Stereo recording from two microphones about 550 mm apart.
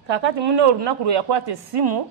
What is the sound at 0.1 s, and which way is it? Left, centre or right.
Speech, right.